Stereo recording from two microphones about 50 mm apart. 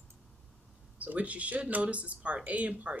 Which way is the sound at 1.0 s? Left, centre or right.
Right.